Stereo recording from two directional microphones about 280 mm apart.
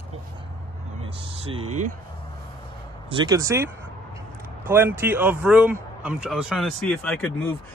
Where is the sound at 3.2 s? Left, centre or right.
Centre.